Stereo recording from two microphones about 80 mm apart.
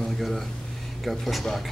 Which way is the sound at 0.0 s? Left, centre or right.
Centre.